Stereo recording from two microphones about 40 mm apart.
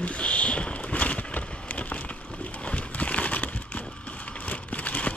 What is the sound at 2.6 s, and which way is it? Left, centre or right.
Crumpling, left.